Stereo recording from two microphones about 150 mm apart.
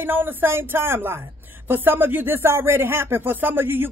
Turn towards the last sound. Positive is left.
turn(degrees=-15)  # may be behind; listen again after turning